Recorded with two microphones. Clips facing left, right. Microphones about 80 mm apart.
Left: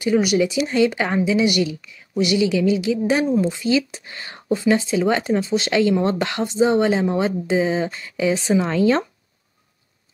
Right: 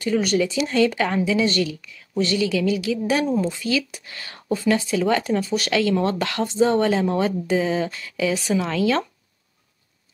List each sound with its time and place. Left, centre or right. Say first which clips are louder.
0.0 s speech: left 3 dB; centre